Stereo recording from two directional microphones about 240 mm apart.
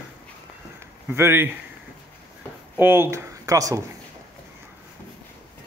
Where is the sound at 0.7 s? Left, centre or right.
Centre.